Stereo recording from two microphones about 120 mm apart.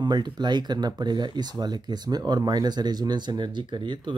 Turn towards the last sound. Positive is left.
turn(degrees=-40)  # may be behind; listen again after turning